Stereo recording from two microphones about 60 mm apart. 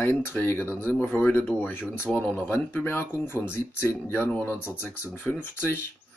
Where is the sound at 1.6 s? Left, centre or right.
Left.